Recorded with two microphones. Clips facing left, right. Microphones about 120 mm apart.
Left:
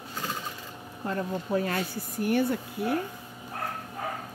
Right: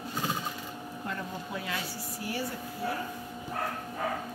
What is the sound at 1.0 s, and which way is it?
Speech, 40° left (ahead or behind).